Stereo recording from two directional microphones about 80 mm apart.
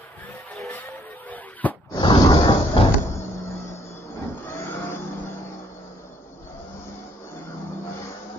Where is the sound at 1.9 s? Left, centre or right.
Left.